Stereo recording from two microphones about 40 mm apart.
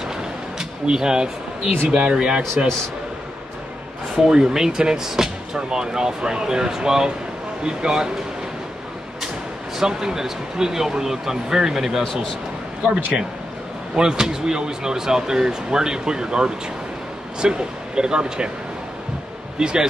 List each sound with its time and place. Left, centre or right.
0.6 s speech: centre
4.1 s speech: centre
9.8 s speech: centre
12.0 s a man's voice: centre
12.8 s speech: right
19.6 s speech: right